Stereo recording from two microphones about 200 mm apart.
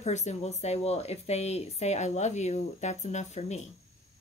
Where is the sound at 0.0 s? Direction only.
35° left (ahead or behind).